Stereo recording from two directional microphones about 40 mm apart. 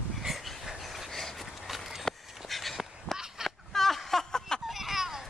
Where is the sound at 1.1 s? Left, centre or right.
Centre.